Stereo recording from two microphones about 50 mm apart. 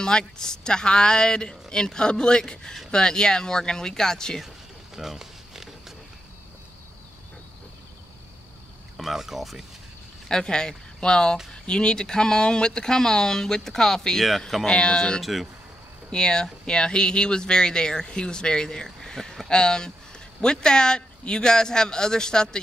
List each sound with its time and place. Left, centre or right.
0.0 s speech: centre
4.9 s a sound: centre
8.9 s speech: centre
10.2 s speech: centre
18.9 s a sound: centre
19.6 s speech: centre